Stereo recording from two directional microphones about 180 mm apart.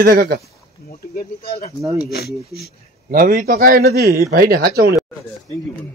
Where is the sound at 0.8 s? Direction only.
55° left (ahead or behind).